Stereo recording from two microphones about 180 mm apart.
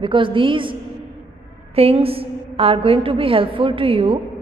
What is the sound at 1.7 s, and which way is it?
A woman's voice, 30° right (ahead or behind).